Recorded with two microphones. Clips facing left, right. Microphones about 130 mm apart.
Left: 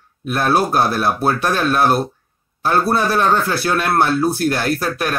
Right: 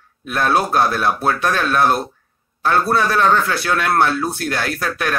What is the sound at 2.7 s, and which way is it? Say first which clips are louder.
A man's voice: even; 30° left (ahead or behind).